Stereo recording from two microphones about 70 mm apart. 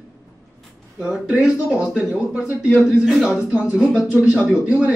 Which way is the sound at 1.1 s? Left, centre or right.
Centre.